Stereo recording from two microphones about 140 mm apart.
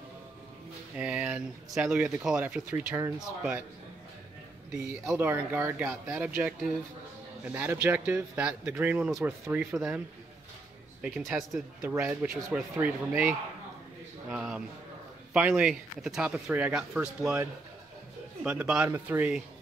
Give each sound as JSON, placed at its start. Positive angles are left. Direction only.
{"t": 0.9, "sound": "speech", "side_deg": -5}
{"t": 5.0, "sound": "speech", "side_deg": -10}
{"t": 11.0, "sound": "speech", "side_deg": -5}
{"t": 14.3, "sound": "speech", "side_deg": -5}